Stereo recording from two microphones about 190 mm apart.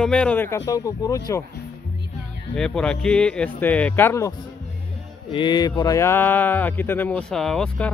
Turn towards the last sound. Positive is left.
turn(degrees=5)  # may be behind; listen again after turning